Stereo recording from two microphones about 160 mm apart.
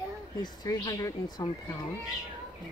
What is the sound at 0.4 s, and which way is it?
Speech, 25° left (ahead or behind).